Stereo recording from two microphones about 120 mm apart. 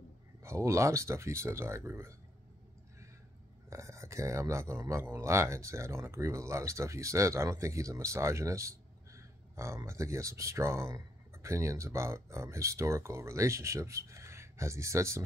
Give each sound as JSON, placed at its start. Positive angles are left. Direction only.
{"t": 0.4, "sound": "speech", "side_deg": -25}
{"t": 3.7, "sound": "speech", "side_deg": -25}